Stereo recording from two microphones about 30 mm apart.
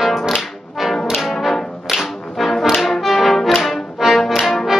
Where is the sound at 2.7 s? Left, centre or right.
Centre.